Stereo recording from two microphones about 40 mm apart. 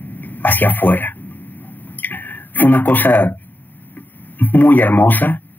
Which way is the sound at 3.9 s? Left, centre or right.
Left.